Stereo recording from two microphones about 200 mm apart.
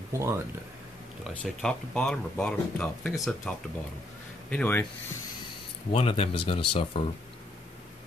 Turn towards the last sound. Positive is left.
turn(degrees=25)  # may be behind; listen again after turning